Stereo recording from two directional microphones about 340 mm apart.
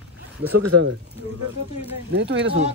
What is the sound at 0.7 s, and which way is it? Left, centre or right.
Speech, right.